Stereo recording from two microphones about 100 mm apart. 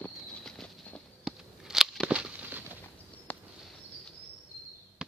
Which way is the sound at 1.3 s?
5° right (ahead or behind).